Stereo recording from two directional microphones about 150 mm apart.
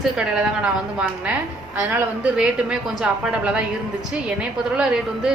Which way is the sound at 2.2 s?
5° right (ahead or behind).